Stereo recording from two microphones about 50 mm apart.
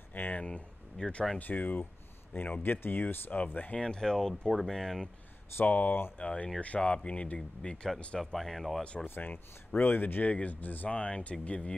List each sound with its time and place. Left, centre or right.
0.1 s speech: left
0.4 s speech: centre
1.4 s speech: left
3.7 s speech: centre
5.7 s speech: left; by 7.9 s centre
8.2 s speech: centre
9.0 s speech: left
10.2 s speech: left